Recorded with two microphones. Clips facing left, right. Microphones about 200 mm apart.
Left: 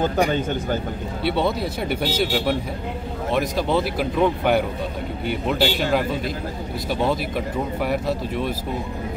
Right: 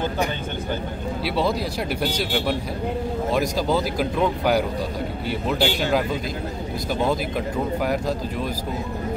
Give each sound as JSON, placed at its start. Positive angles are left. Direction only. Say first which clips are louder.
{"t": 1.2, "sound": "speech", "louder": "left 2 dB", "side_deg": 0}